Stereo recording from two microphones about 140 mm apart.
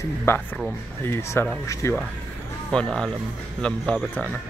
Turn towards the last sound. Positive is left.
turn(degrees=10)  # may be behind; listen again after turning